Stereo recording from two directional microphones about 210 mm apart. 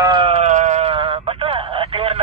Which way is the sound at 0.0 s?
25° right (ahead or behind).